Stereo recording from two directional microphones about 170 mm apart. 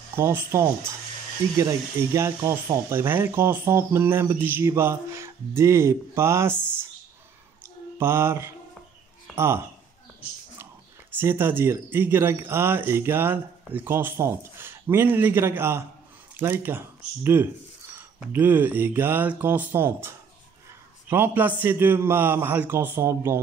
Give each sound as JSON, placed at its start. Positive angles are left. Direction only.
{"t": 0.1, "sound": "speech", "side_deg": -15}
{"t": 7.6, "sound": "mantra", "side_deg": -15}
{"t": 9.3, "sound": "speech", "side_deg": -15}
{"t": 11.1, "sound": "speech", "side_deg": -10}